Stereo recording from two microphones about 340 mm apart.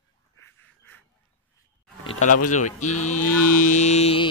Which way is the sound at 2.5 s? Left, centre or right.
Left.